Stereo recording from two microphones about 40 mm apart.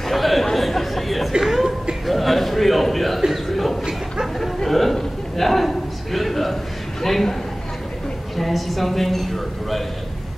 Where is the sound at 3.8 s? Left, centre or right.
Centre.